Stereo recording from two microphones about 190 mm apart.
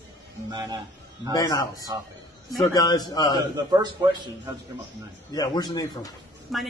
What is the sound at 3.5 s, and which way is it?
Speech, 20° right (ahead or behind).